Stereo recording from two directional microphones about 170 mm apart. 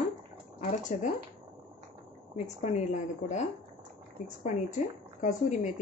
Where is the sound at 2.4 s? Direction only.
45° left (ahead or behind).